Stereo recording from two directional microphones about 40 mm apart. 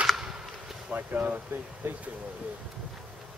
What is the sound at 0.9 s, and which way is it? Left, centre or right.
Speech, right.